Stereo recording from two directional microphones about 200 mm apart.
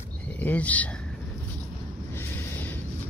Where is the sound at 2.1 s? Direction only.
10° left (ahead or behind).